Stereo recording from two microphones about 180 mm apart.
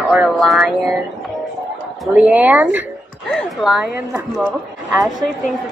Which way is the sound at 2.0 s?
5° right (ahead or behind).